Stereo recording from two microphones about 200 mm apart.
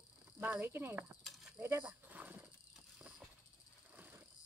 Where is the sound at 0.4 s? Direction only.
10° right (ahead or behind).